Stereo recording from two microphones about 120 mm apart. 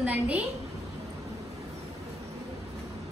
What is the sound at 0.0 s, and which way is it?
Speech, 10° right (ahead or behind).